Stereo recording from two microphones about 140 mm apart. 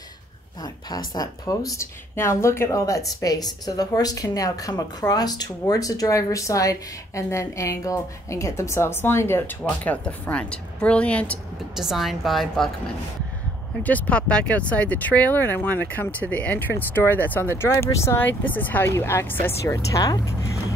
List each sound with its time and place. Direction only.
0.6 s speech: 25° left (ahead or behind); by 11.3 s 10° left (ahead or behind)
11.7 s a woman's voice: 5° right (ahead or behind)
13.8 s speech: 10° left (ahead or behind)